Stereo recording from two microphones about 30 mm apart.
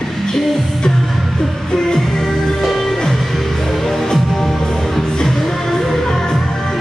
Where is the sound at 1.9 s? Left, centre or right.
Centre.